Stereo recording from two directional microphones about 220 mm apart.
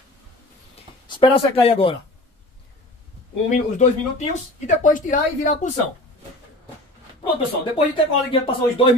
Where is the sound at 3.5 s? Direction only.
35° left (ahead or behind).